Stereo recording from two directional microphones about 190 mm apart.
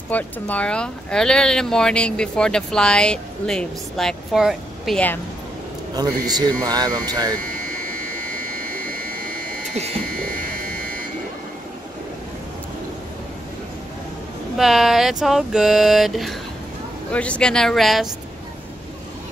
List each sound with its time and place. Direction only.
0.1 s speech: 5° left (ahead or behind)
5.9 s speech: 20° right (ahead or behind)
7.6 s buzzer: 50° right (ahead or behind)
8.8 s a sound: 50° right (ahead or behind)
10.1 s buzzer: 50° right (ahead or behind)
14.6 s speech: centre (ahead or behind)